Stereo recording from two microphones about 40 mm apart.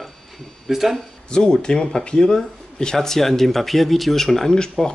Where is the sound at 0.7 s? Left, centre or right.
Centre.